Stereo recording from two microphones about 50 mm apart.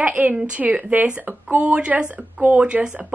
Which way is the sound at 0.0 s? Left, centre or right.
Right.